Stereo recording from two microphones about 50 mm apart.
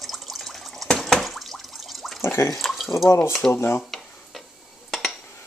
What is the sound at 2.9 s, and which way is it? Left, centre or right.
Speech, left.